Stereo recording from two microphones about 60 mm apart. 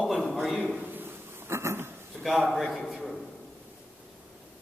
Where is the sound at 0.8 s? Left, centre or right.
Right.